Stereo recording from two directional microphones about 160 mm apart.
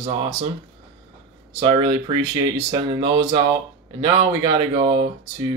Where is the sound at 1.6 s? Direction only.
30° right (ahead or behind).